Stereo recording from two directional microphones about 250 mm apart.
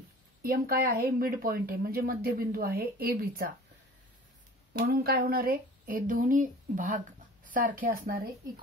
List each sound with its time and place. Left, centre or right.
0.4 s speech: right
4.7 s speech: right